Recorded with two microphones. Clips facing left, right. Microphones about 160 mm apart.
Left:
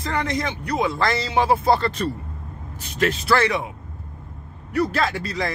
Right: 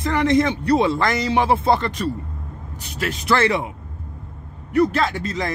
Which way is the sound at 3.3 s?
25° right (ahead or behind).